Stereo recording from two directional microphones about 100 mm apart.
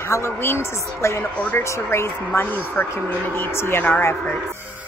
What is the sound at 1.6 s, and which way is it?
A woman's voice, 30° left (ahead or behind).